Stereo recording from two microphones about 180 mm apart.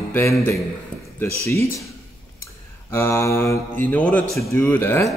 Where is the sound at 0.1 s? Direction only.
10° left (ahead or behind).